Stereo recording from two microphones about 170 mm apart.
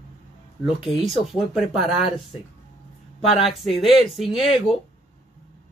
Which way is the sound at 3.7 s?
30° left (ahead or behind).